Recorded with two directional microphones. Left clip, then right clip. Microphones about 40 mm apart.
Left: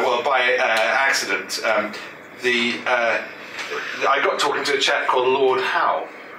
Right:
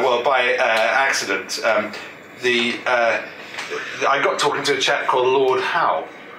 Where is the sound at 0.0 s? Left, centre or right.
Centre.